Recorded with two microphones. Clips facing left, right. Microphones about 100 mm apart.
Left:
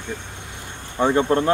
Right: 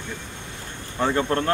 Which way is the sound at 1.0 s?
20° left (ahead or behind).